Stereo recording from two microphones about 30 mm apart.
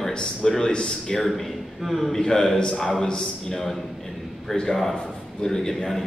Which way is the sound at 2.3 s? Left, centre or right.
Left.